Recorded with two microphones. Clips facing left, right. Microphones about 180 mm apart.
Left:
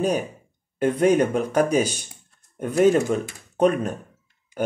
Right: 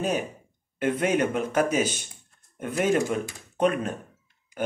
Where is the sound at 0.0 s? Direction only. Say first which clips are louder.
Left 4 dB; 40° left (ahead or behind).